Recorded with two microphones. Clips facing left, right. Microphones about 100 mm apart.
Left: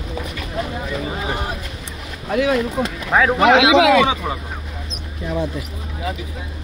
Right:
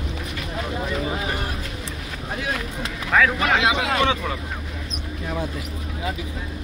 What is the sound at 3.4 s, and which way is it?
Speech, 90° left.